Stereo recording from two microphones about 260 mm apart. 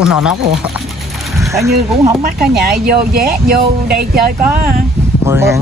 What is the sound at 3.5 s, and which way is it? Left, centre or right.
Speech, right.